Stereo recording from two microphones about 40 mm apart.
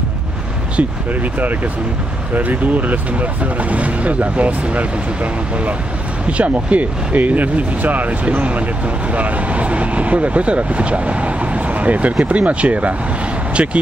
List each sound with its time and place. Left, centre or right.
0.7 s speech: right